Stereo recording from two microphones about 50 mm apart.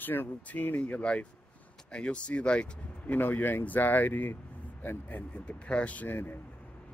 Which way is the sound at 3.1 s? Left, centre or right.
Left.